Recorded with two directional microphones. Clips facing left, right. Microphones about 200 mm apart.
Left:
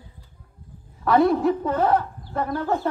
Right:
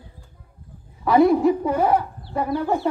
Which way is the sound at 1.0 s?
10° right (ahead or behind).